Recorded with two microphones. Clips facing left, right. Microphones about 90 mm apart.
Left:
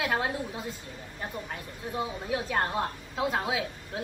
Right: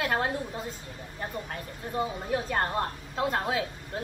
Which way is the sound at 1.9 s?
5° left (ahead or behind).